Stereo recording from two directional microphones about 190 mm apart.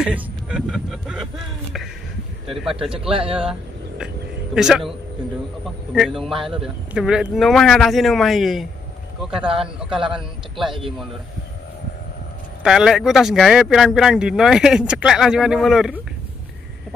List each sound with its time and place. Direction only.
0.0 s speech: 5° right (ahead or behind)
3.1 s speech: 30° right (ahead or behind)
4.6 s speech: 5° right (ahead or behind)
5.9 s speech: centre (ahead or behind)
12.6 s speech: 5° right (ahead or behind)